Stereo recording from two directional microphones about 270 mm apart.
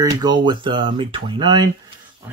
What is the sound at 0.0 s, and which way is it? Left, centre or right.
Speech, centre.